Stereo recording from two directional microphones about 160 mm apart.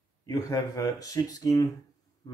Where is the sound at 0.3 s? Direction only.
20° left (ahead or behind).